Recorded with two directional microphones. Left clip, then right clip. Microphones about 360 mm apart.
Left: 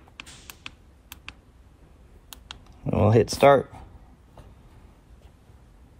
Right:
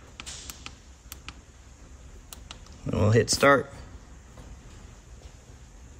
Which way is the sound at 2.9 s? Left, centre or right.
Centre.